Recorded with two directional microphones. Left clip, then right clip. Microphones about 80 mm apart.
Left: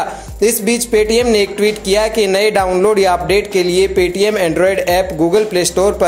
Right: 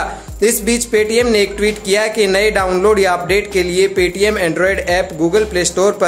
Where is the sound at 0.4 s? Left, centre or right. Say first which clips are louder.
Left 1 dB; left.